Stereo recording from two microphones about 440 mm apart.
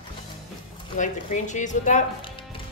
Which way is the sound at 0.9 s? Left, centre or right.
Centre.